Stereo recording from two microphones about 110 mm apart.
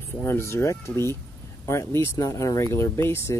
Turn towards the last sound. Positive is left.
turn(degrees=25)  # may be behind; listen again after turning